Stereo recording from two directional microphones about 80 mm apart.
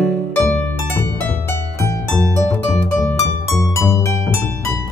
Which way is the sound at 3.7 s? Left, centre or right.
Left.